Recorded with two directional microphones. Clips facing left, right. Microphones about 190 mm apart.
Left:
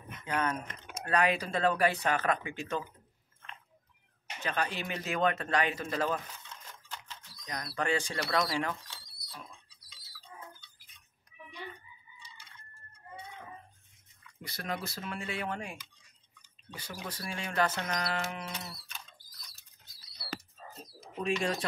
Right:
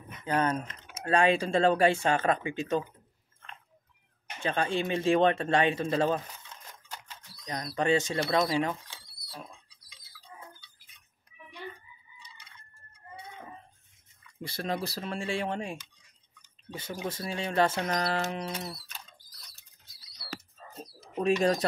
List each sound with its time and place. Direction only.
0.2 s speech: 35° right (ahead or behind)
4.4 s speech: 25° right (ahead or behind)
6.7 s camera: 10° right (ahead or behind)
7.4 s speech: 25° right (ahead or behind)
14.4 s speech: 30° right (ahead or behind)
17.9 s bird: 40° right (ahead or behind)
21.1 s speech: 40° right (ahead or behind)